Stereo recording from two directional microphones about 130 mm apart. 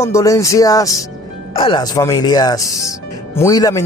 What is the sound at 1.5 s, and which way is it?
Speech, 40° left (ahead or behind).